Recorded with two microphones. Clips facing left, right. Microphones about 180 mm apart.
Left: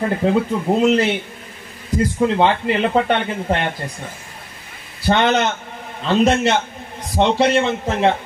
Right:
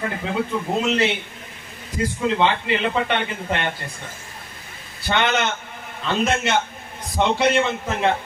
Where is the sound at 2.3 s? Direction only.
45° left (ahead or behind).